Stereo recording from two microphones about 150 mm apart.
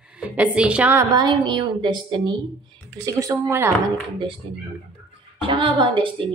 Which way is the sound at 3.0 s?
20° right (ahead or behind).